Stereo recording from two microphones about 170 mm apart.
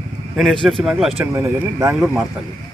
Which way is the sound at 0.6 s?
Centre (ahead or behind).